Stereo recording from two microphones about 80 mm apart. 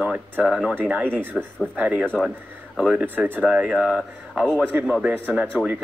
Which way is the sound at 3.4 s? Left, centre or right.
Centre.